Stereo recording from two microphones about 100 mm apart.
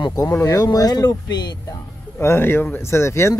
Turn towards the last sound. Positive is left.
turn(degrees=30)  # may be behind; listen again after turning